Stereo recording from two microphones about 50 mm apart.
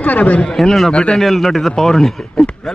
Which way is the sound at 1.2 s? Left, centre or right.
Centre.